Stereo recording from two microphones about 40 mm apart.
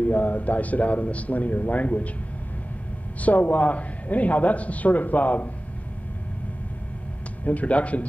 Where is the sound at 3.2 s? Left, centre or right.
Left.